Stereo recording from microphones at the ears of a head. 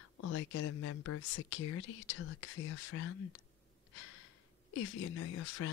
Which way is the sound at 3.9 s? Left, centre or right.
Left.